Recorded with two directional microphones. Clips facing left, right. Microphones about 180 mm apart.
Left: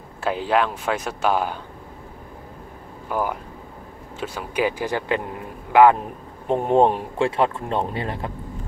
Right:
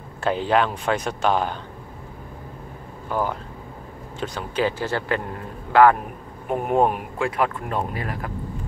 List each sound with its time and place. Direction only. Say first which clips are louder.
0.2 s speech: right 1 dB; 5° left (ahead or behind)
3.1 s a man's voice: even; 10° left (ahead or behind)
6.4 s speech: left 3 dB; 25° left (ahead or behind)